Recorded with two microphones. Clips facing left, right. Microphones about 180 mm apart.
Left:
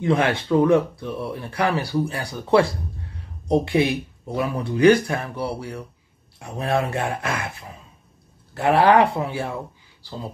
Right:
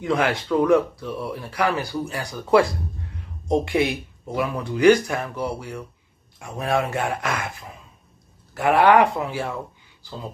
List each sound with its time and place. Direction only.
0.1 s speech: 25° left (ahead or behind)
3.4 s speech: 35° left (ahead or behind)
6.8 s speech: 30° left (ahead or behind)
8.5 s speech: 35° left (ahead or behind)